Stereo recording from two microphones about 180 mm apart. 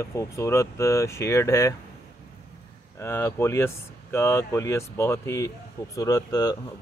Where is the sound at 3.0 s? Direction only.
15° left (ahead or behind).